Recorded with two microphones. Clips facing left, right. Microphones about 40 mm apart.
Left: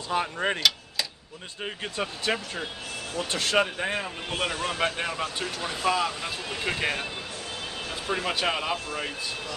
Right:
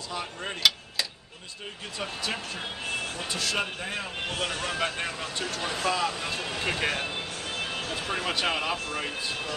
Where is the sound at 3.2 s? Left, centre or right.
Left.